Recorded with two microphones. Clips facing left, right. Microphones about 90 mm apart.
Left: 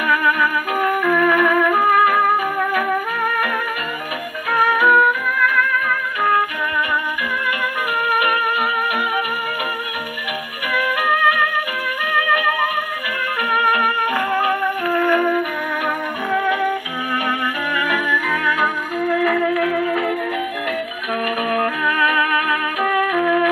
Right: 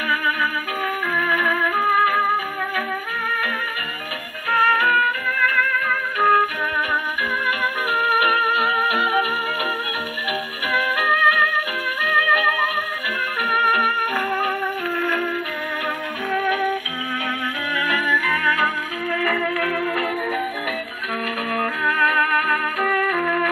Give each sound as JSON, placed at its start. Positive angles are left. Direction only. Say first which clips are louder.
{"t": 0.1, "sound": "music", "louder": "left 5 dB", "side_deg": 40}
{"t": 4.7, "sound": "music", "louder": "left 5 dB", "side_deg": 20}
{"t": 8.1, "sound": "music", "louder": "left 1 dB", "side_deg": -20}
{"t": 11.0, "sound": "music", "louder": "left 2 dB", "side_deg": -20}
{"t": 15.0, "sound": "flute", "louder": "left 7 dB", "side_deg": 10}
{"t": 17.7, "sound": "music", "louder": "left 1 dB", "side_deg": 35}
{"t": 18.6, "sound": "music", "louder": "left 3 dB", "side_deg": 15}
{"t": 19.8, "sound": "music", "louder": "left 3 dB", "side_deg": 0}
{"t": 21.5, "sound": "music", "louder": "left 2 dB", "side_deg": 0}